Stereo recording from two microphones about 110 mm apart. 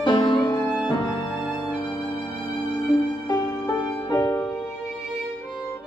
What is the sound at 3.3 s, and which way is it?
Music, 35° left (ahead or behind).